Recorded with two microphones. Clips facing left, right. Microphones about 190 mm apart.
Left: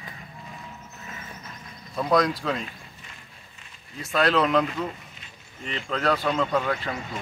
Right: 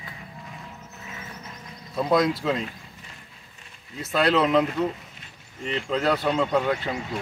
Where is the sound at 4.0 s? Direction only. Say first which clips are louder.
Right 1 dB; centre (ahead or behind).